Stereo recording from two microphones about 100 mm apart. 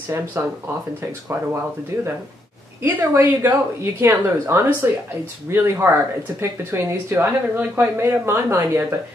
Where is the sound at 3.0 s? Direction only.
35° right (ahead or behind).